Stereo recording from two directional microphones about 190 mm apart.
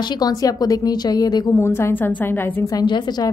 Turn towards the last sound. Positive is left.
turn(degrees=20)  # may be behind; listen again after turning